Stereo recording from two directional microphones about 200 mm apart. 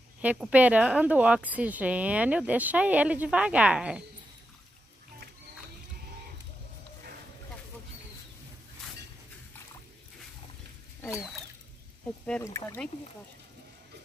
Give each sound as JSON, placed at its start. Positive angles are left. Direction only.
{"t": 0.2, "sound": "a woman's voice", "side_deg": -5}
{"t": 11.0, "sound": "rodents", "side_deg": 15}
{"t": 12.3, "sound": "speech", "side_deg": 10}